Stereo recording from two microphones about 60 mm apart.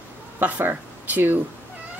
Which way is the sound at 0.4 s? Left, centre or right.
Right.